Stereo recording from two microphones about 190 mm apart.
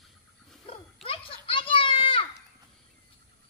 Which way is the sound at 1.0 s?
30° left (ahead or behind).